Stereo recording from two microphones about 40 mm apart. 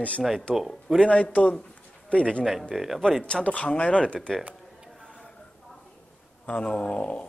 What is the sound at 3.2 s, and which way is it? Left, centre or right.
Speech, left.